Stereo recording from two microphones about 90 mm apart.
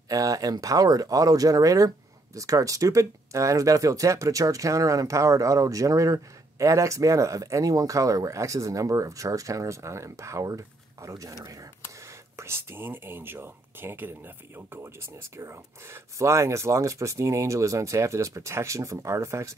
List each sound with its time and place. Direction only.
0.1 s speech: 40° right (ahead or behind)